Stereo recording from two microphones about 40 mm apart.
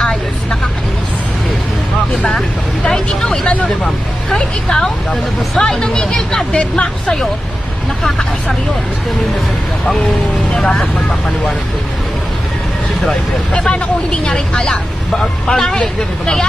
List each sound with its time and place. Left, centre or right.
0.0 s vehicle: centre
3.3 s speech: centre
5.6 s speech: centre
6.5 s speech: left
10.5 s speech: left
13.7 s speech: left
15.4 s speech: centre